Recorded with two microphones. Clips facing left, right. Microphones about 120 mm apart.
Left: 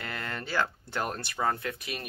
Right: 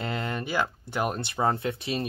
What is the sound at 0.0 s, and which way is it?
Speech, 20° right (ahead or behind).